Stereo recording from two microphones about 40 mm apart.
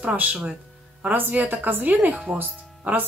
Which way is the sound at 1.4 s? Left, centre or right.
Right.